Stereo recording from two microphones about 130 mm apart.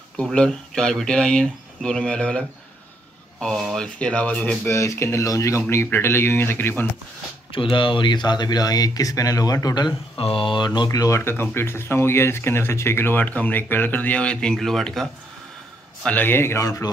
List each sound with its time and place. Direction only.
0.2 s speech: 5° left (ahead or behind)
4.6 s speech: 20° left (ahead or behind)
7.5 s speech: 40° left (ahead or behind)
10.1 s speech: 45° left (ahead or behind); by 16.9 s 25° left (ahead or behind)